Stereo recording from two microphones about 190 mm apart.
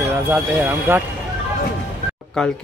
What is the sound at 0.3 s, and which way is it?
Speech, 10° right (ahead or behind).